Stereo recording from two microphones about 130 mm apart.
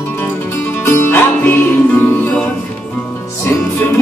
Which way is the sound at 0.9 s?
15° left (ahead or behind).